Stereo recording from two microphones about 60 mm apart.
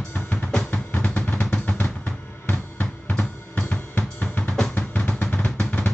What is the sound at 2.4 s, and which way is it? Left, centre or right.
Drum kit, left.